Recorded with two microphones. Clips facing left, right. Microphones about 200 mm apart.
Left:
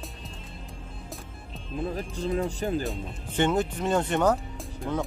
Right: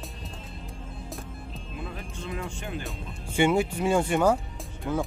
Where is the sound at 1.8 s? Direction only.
35° left (ahead or behind).